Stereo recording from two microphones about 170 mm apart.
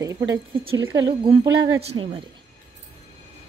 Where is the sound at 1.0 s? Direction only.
30° right (ahead or behind).